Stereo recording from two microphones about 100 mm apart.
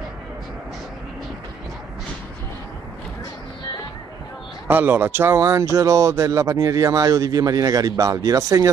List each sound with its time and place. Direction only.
4.6 s speech: 20° right (ahead or behind)